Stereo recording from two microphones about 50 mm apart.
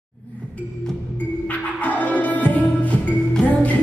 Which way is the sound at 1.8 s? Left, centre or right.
Left.